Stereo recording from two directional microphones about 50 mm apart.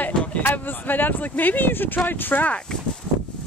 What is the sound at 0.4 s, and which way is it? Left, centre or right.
Speech, left.